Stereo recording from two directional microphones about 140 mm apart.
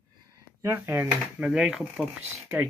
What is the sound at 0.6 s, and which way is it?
Speech, 20° right (ahead or behind).